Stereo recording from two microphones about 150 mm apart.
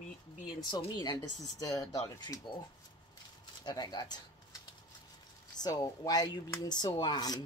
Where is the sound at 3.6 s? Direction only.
30° left (ahead or behind).